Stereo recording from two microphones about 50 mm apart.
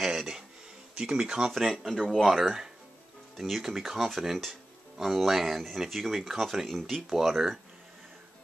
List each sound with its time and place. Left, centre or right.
0.0 s a sound: centre
0.9 s speech: right
1.5 s speech: centre